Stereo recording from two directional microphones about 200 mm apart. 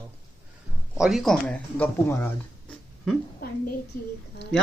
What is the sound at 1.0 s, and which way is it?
Speech, centre (ahead or behind).